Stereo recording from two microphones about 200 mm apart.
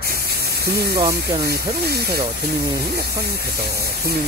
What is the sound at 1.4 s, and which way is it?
Speech, 50° right (ahead or behind).